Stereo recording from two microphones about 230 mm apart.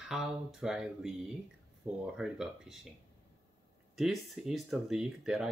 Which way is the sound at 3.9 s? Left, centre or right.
Centre.